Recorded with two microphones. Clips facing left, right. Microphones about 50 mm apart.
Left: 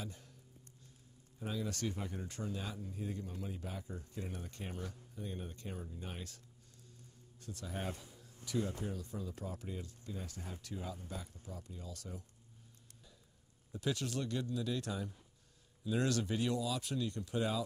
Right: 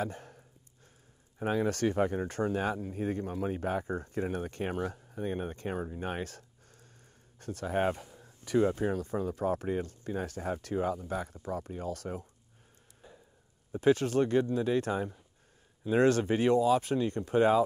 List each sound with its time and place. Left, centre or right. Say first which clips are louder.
0.0 s speech: right 13 dB; right
1.4 s speech: right 11 dB; right
13.7 s speech: right 13 dB; right